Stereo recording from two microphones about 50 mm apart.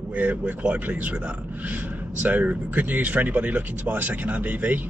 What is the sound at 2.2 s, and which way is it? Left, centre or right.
Speech, right.